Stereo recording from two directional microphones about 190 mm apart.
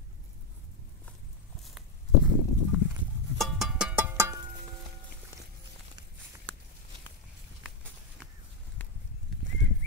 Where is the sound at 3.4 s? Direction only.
Centre (ahead or behind).